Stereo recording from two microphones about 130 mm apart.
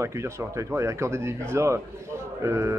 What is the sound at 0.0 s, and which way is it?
Speech, 20° right (ahead or behind).